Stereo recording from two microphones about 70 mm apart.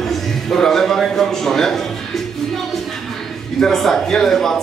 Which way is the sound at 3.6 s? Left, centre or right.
Centre.